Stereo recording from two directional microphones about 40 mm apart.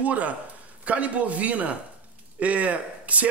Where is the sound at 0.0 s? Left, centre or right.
Right.